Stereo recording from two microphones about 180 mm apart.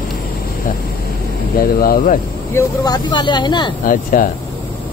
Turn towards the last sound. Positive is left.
turn(degrees=50)  # may be behind; listen again after turning